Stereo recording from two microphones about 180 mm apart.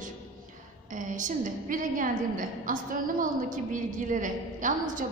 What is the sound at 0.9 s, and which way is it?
A woman's voice, 45° right (ahead or behind).